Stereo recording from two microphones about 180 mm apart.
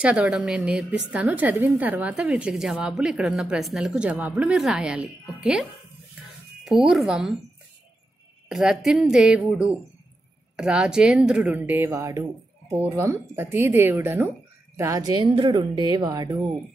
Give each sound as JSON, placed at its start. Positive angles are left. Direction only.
{"t": 0.0, "sound": "a woman's voice", "side_deg": -5}
{"t": 8.5, "sound": "a woman's voice", "side_deg": 0}